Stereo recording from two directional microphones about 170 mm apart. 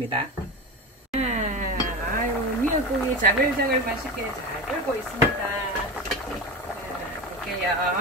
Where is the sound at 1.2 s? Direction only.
40° right (ahead or behind).